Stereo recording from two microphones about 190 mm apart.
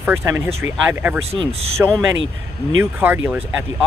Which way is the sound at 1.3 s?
30° right (ahead or behind).